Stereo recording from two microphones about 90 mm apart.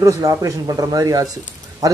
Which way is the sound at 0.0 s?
40° right (ahead or behind).